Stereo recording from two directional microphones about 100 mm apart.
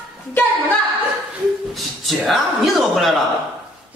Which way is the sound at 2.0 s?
Centre (ahead or behind).